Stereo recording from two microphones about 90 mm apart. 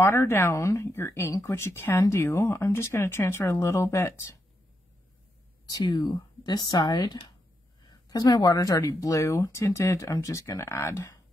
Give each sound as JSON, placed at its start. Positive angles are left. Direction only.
{"t": 0.0, "sound": "speech", "side_deg": 30}
{"t": 5.9, "sound": "speech", "side_deg": 55}